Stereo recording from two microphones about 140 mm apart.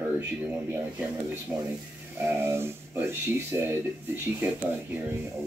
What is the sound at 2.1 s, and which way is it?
Speech, 15° right (ahead or behind).